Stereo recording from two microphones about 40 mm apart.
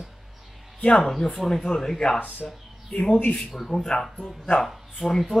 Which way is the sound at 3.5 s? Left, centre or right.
Centre.